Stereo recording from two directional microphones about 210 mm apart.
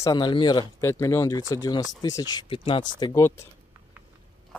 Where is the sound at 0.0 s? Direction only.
20° left (ahead or behind).